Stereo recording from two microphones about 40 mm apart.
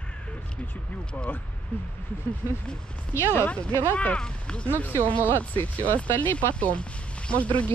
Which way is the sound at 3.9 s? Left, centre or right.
Left.